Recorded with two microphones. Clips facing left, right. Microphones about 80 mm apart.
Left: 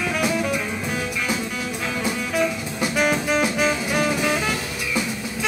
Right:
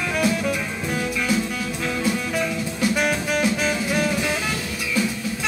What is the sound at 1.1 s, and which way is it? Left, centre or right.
Music, left.